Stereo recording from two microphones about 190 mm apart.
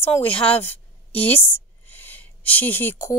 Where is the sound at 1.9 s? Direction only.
10° left (ahead or behind).